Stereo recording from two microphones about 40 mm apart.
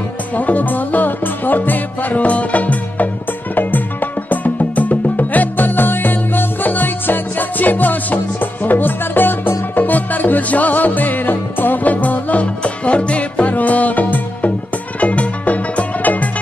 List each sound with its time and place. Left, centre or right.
0.3 s music: left